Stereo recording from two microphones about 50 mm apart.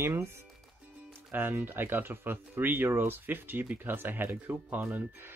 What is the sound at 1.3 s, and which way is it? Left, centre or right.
Speech, right.